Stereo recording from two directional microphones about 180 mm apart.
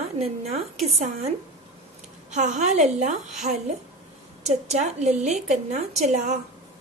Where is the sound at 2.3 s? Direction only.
40° right (ahead or behind).